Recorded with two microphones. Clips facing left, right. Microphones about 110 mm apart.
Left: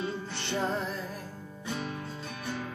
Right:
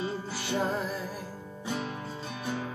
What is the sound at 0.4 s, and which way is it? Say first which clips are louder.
Music: right 2 dB; 5° right (ahead or behind).